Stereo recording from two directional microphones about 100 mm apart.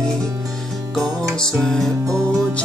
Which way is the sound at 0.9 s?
5° left (ahead or behind).